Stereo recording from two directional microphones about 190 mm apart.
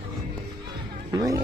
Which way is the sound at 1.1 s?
20° right (ahead or behind).